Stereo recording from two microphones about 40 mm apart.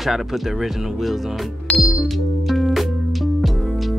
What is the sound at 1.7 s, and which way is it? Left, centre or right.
Music, left.